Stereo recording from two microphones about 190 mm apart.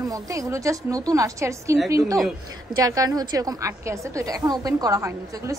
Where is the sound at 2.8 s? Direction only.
20° right (ahead or behind).